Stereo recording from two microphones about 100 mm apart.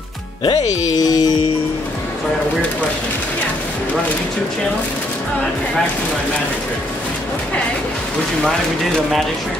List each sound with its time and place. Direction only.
0.4 s speech: 45° left (ahead or behind)